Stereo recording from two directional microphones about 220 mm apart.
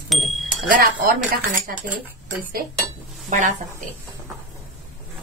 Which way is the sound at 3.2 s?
35° right (ahead or behind).